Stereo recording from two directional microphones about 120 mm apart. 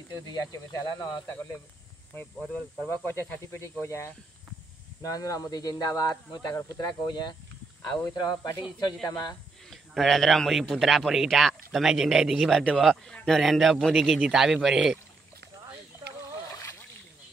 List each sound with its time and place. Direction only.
0.3 s speech: 35° left (ahead or behind)
2.5 s speech: 15° left (ahead or behind); by 9.4 s 30° left (ahead or behind)
9.7 s a man's voice: centre (ahead or behind)